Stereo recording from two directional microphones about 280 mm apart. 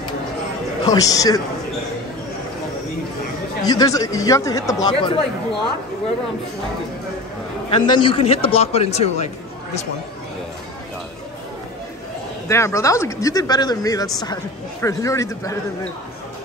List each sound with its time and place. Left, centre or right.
0.8 s speech: centre
3.6 s speech: centre
7.7 s a man's voice: centre
12.4 s speech: centre